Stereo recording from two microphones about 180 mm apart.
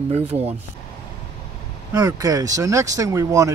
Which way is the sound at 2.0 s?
20° right (ahead or behind).